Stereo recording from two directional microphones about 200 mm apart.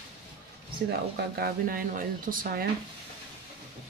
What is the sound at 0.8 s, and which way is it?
Speech, 50° right (ahead or behind).